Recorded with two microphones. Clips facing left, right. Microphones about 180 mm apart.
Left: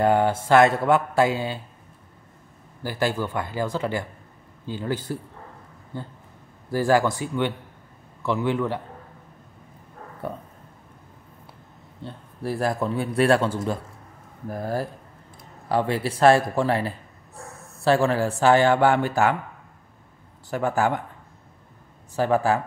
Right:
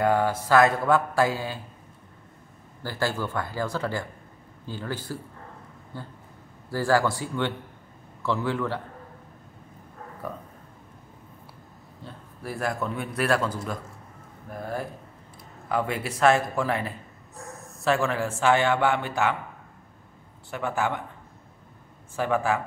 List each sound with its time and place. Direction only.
0.0 s a man's voice: 25° left (ahead or behind)
2.8 s a man's voice: 15° left (ahead or behind)
10.2 s a man's voice: 30° left (ahead or behind)
12.0 s a man's voice: 30° left (ahead or behind)
20.4 s speech: 40° left (ahead or behind)
22.1 s speech: 35° left (ahead or behind)